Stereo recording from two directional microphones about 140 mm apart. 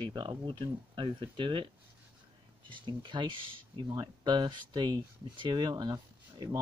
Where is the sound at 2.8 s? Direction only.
35° right (ahead or behind).